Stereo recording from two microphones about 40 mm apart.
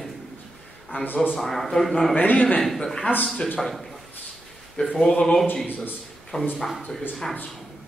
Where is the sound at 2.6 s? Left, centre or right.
Centre.